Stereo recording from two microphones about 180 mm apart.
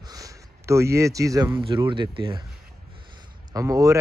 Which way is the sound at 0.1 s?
15° right (ahead or behind).